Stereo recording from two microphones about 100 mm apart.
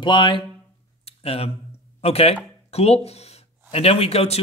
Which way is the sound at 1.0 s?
90° left.